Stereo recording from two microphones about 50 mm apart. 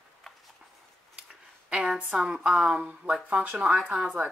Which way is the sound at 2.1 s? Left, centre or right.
Centre.